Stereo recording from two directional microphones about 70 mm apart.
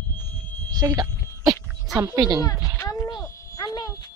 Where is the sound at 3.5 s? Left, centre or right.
Left.